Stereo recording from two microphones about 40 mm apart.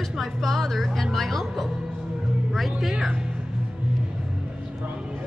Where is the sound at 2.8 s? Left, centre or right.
Centre.